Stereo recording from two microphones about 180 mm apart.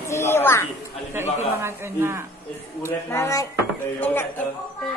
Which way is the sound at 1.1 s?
15° right (ahead or behind).